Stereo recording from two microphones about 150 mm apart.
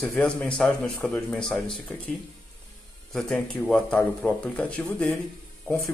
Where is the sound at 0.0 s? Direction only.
5° left (ahead or behind).